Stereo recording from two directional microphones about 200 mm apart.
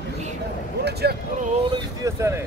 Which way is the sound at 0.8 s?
55° right (ahead or behind).